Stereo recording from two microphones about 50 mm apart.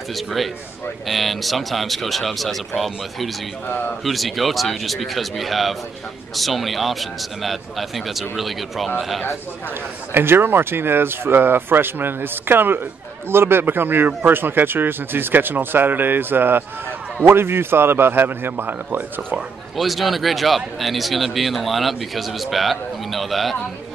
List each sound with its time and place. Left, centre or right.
0.1 s speech: centre
10.1 s speech: right
19.8 s speech: centre